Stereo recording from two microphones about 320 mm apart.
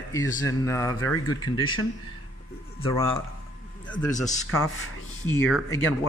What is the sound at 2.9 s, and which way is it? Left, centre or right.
A man's voice, centre.